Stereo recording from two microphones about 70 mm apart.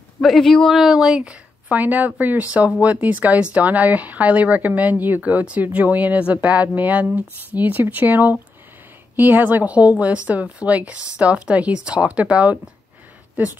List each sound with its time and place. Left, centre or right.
0.2 s a woman's voice: centre; by 13.5 s right